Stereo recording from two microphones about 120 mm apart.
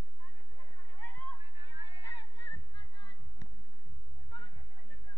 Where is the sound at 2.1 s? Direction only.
35° left (ahead or behind).